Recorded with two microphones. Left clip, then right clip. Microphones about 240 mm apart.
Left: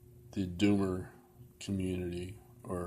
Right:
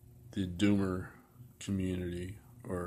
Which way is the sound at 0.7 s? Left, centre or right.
Centre.